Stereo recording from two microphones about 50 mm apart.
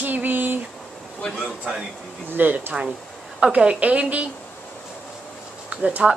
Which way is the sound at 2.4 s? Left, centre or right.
Right.